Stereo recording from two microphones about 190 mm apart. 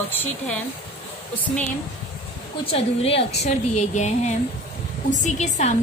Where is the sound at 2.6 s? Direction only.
30° left (ahead or behind).